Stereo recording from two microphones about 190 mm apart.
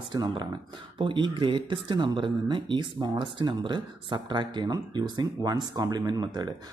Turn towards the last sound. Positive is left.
turn(degrees=-20)  # may be behind; listen again after turning